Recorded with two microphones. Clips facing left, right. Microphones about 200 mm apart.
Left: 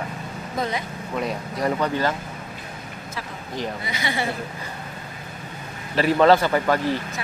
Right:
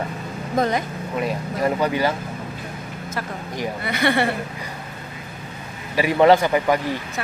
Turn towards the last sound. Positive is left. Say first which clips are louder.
# right 1 dB
turn(degrees=-15)  # may be behind; listen again after turning